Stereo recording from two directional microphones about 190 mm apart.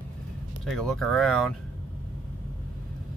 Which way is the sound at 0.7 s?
Centre (ahead or behind).